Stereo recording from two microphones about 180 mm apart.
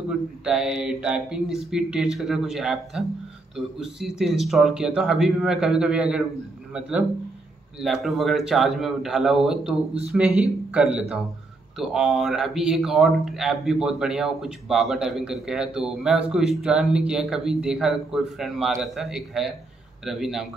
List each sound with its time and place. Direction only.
0.1 s a man's voice: 5° right (ahead or behind)